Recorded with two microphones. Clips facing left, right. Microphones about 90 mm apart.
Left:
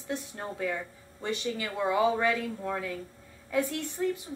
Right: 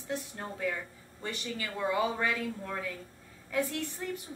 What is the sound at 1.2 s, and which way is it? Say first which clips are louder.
A woman's voice: left 5 dB; 20° left (ahead or behind).